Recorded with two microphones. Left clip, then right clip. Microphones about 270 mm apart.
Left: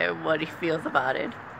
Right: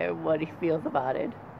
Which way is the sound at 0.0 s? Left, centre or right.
Centre.